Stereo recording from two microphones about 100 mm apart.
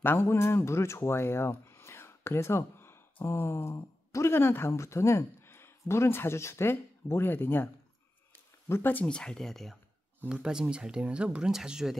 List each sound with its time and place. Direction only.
0.0 s speech: 20° left (ahead or behind)
9.0 s speech: 5° left (ahead or behind)
10.2 s speech: 10° right (ahead or behind)